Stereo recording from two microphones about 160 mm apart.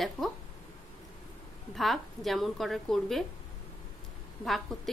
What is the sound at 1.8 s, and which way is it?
A woman's voice, centre (ahead or behind).